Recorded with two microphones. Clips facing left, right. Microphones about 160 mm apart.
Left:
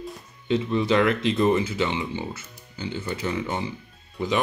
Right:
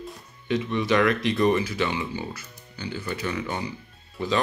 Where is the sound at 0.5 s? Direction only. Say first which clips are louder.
Left 2 dB; 25° left (ahead or behind).